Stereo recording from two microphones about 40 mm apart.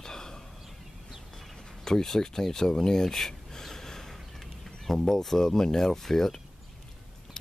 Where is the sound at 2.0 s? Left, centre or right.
Centre.